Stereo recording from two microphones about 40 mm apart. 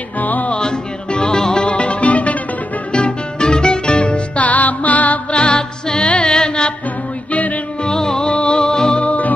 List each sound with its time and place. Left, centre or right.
0.2 s music: left
0.6 s music: left
2.9 s music: left
5.3 s music: left
7.8 s music: centre
8.3 s music: left
9.0 s music: left